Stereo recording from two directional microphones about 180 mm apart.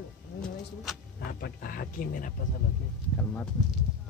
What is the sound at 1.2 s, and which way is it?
Speech, 60° left (ahead or behind).